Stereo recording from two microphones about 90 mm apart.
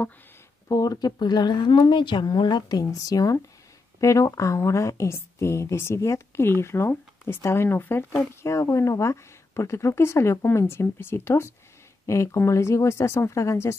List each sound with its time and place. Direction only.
0.7 s a woman's voice: 40° left (ahead or behind)